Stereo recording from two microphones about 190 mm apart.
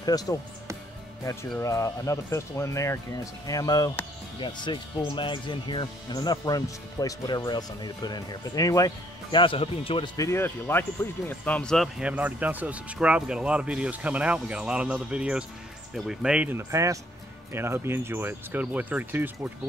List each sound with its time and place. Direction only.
0.0 s speech: 20° left (ahead or behind); by 19.3 s 10° right (ahead or behind)